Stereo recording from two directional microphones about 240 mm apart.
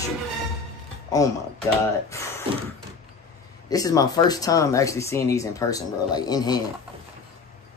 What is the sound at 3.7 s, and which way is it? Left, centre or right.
Speech, centre.